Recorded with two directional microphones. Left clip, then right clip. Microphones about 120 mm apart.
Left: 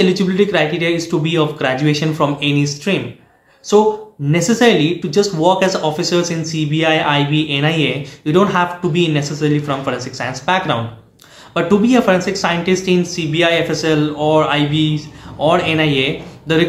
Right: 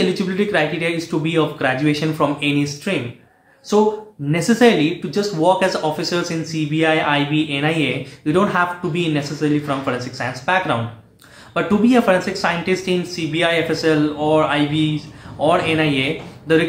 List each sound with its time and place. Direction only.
0.0 s speech: 15° left (ahead or behind)
4.3 s speech: 10° left (ahead or behind)